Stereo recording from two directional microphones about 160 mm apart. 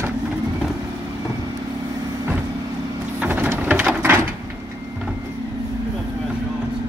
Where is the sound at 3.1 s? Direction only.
10° right (ahead or behind).